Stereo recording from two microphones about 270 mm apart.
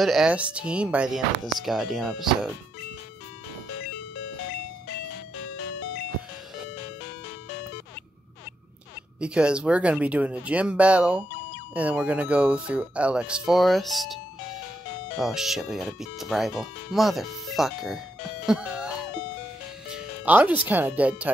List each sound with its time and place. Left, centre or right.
0.0 s speech: centre
5.4 s music: left
9.2 s speech: centre
18.5 s music: centre
19.9 s speech: centre